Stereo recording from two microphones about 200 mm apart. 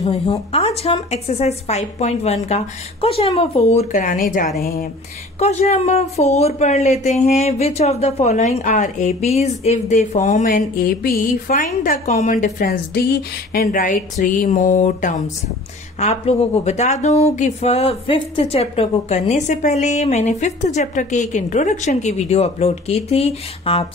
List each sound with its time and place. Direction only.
0.0 s speech: 30° left (ahead or behind)
12.4 s a woman's voice: 50° left (ahead or behind); by 23.9 s 30° left (ahead or behind)